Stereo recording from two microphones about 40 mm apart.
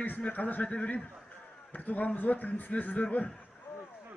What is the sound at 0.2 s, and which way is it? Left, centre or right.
A man's voice, left.